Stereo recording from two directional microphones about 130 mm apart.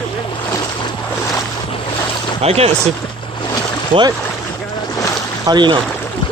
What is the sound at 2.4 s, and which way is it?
Speech, 50° right (ahead or behind).